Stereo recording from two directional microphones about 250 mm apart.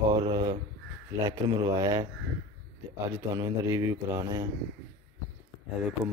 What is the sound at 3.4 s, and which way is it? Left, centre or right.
Speech, centre.